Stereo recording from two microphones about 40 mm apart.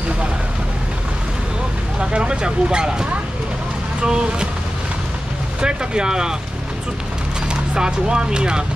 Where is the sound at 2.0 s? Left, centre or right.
Right.